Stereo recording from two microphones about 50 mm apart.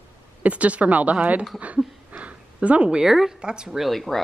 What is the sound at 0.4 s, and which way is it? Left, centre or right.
A woman's voice, right.